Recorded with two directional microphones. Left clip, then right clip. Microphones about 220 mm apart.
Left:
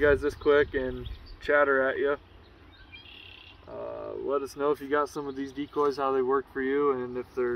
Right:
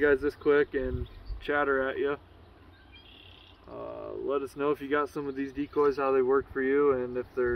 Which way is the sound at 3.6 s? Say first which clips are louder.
Left 2 dB; 35° right (ahead or behind).